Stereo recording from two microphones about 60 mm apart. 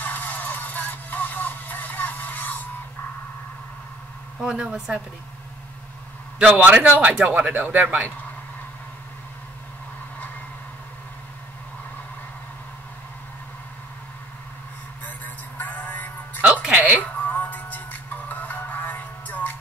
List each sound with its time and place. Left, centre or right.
0.0 s music: left
4.4 s a woman's voice: centre
6.5 s speech: right
15.0 s music: left
16.6 s music: centre
17.0 s music: left